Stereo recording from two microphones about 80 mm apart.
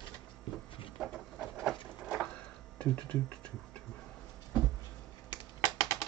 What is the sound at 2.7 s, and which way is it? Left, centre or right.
Music, centre.